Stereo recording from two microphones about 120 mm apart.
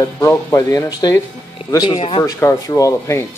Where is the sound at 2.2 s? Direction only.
30° left (ahead or behind).